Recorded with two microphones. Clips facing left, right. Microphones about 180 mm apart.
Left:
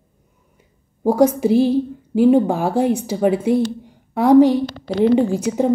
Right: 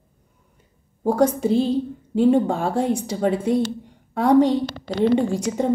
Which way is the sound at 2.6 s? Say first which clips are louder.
Left 4 dB; 70° left (ahead or behind).